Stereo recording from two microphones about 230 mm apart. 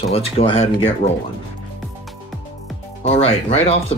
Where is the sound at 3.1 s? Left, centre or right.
Left.